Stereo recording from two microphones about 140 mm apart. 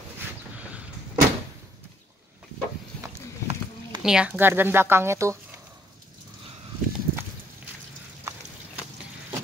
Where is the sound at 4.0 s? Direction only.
5° right (ahead or behind); by 5.3 s 20° right (ahead or behind).